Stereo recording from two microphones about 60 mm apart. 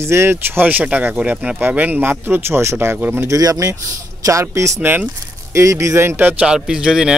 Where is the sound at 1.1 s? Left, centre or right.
Centre.